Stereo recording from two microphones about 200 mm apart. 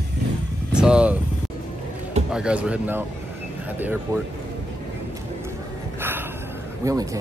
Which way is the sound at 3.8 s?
10° right (ahead or behind).